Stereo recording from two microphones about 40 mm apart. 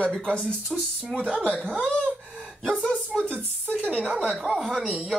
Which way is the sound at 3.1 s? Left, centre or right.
Centre.